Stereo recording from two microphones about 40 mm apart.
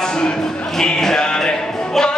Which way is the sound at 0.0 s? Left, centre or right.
Centre.